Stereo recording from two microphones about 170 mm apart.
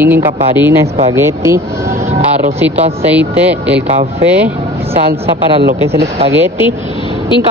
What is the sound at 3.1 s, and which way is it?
Speech, 10° right (ahead or behind).